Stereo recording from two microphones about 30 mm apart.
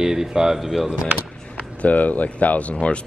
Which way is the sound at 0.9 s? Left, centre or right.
Right.